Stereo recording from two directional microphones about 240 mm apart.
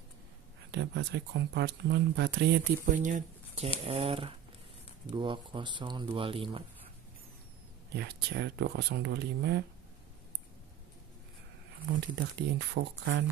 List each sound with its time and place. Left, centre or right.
0.7 s speech: right
7.9 s speech: right
12.4 s speech: right